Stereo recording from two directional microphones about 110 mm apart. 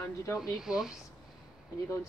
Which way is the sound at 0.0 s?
25° left (ahead or behind).